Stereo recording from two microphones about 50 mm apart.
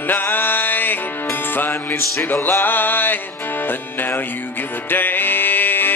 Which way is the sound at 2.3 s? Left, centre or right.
Left.